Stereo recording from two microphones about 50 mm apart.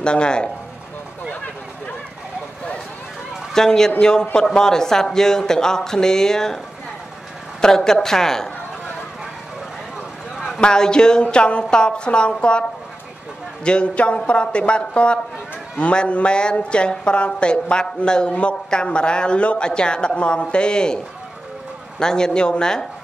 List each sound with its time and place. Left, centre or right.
0.0 s speech: centre
3.5 s speech: centre
7.6 s speech: centre
10.3 s a sound: centre
10.6 s speech: centre
13.7 s speech: left
22.0 s speech: centre